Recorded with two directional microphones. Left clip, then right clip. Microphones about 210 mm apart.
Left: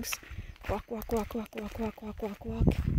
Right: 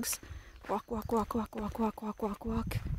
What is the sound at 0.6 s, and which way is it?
Speech, 50° left (ahead or behind).